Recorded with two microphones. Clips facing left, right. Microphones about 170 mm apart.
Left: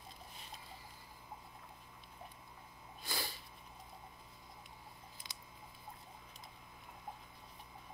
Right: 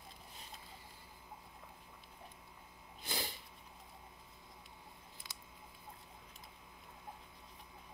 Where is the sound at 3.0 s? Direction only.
20° right (ahead or behind).